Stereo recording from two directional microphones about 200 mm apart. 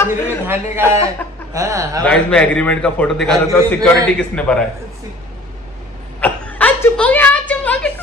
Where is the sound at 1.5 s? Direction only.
15° right (ahead or behind).